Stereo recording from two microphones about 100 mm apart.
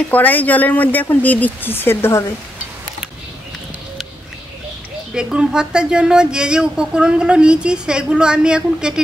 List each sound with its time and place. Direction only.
0.1 s speech: 15° left (ahead or behind)
5.1 s speech: 10° right (ahead or behind)